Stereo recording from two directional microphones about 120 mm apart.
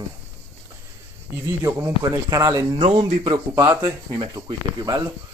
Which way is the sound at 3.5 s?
35° right (ahead or behind).